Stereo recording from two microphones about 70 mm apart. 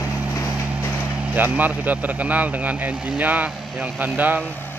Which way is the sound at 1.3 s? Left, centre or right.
Right.